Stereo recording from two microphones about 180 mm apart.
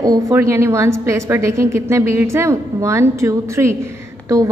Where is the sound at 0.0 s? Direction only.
15° right (ahead or behind).